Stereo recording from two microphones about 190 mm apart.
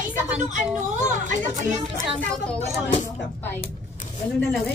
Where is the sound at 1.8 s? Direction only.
Centre (ahead or behind).